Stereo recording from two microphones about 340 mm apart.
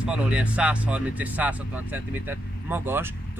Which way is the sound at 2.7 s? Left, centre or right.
Centre.